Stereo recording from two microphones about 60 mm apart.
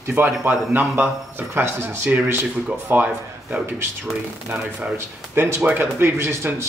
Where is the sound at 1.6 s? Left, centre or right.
Right.